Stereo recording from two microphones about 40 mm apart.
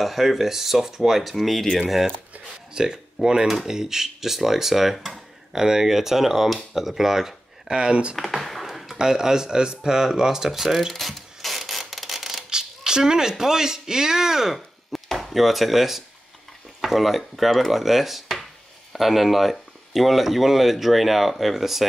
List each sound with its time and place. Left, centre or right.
0.0 s speech: centre
2.7 s speech: centre
5.5 s speech: centre
7.8 s speech: right
8.2 s a sound: centre
8.9 s speech: centre
10.9 s a sound: centre
12.4 s speech: centre